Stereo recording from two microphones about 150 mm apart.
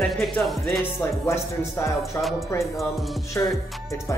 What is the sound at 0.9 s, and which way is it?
Speech, 20° left (ahead or behind).